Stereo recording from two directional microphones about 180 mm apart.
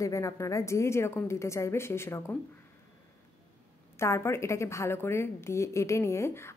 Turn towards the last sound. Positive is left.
turn(degrees=15)  # may be behind; listen again after turning